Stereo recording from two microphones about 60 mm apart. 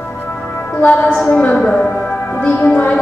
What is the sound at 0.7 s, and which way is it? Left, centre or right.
Music, left.